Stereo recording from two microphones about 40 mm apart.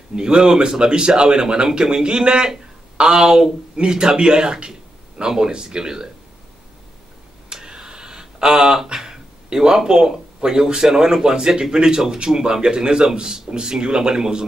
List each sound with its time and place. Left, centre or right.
0.1 s a man's voice: centre
7.5 s a man's voice: centre